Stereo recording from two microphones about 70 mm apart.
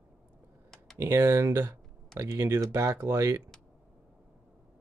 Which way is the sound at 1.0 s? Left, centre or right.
Right.